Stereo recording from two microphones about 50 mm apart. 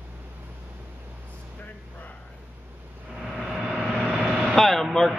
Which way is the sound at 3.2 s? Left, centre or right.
Centre.